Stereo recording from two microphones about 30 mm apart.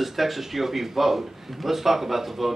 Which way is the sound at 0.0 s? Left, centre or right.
Centre.